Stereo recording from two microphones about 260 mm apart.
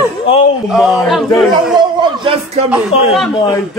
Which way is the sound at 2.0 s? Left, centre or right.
Centre.